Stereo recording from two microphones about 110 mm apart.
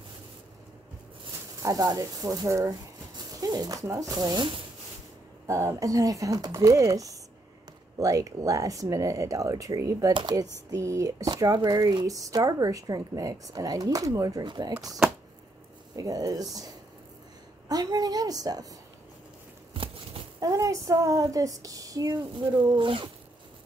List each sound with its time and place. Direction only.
1.6 s speech: 30° right (ahead or behind)
5.5 s speech: 25° right (ahead or behind)
16.0 s speech: 35° right (ahead or behind)
19.7 s a sound: 55° right (ahead or behind)
20.3 s speech: 30° right (ahead or behind)